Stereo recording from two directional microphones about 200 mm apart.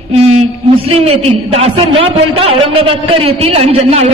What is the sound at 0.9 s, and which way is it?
A man's voice, 30° right (ahead or behind).